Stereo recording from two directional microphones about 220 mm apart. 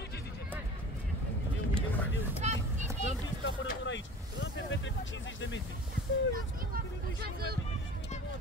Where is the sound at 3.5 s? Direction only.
55° left (ahead or behind).